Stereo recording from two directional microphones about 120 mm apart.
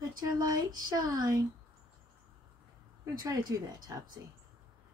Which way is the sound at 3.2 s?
30° right (ahead or behind).